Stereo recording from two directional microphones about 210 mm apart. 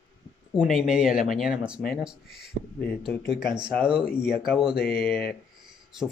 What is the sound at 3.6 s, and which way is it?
Speech, 5° right (ahead or behind).